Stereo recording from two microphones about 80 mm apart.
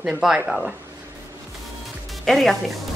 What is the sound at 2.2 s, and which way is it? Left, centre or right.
Speech, centre.